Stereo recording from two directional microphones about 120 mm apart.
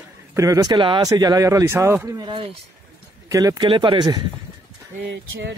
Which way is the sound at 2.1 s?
45° right (ahead or behind).